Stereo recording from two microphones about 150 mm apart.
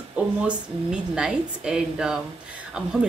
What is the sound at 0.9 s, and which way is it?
Speech, 5° right (ahead or behind).